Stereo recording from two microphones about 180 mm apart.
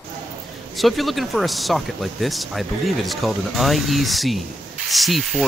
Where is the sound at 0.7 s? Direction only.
Centre (ahead or behind).